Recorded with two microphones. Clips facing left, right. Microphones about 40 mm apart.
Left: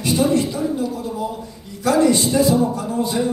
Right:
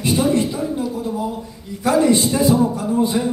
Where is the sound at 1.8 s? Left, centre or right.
Right.